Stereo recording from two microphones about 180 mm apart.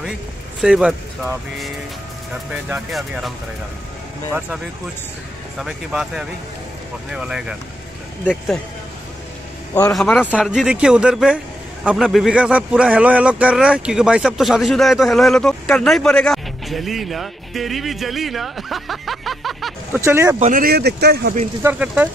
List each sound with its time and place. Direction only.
0.6 s a man's voice: 5° right (ahead or behind)
5.6 s a man's voice: centre (ahead or behind)
9.9 s a man's voice: centre (ahead or behind)
20.0 s speech: 15° right (ahead or behind)
20.3 s speech: 45° right (ahead or behind); by 21.4 s 65° right (ahead or behind)
21.6 s speech: 5° right (ahead or behind)